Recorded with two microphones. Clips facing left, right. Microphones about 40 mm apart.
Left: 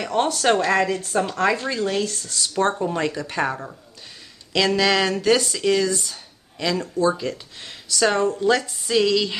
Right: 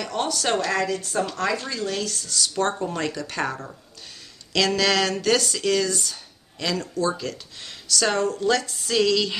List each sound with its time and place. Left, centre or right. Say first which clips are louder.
0.0 s speech: left 5 dB; left
2.8 s speech: left 3 dB; centre